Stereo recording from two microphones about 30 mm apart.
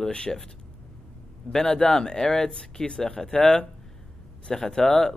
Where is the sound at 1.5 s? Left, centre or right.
Left.